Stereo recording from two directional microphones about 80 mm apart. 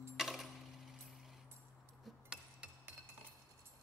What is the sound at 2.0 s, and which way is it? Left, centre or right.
Chink, centre.